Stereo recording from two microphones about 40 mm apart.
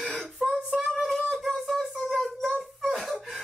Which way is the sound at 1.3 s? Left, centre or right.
Centre.